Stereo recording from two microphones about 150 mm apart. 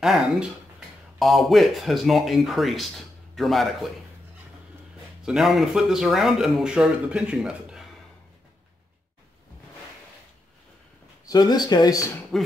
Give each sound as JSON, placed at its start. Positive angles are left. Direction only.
{"t": 0.0, "sound": "speech", "side_deg": -5}
{"t": 5.2, "sound": "speech", "side_deg": 0}
{"t": 11.2, "sound": "speech", "side_deg": 25}
{"t": 12.3, "sound": "speech", "side_deg": 0}